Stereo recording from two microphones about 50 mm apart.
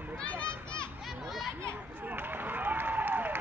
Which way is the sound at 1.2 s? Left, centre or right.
Centre.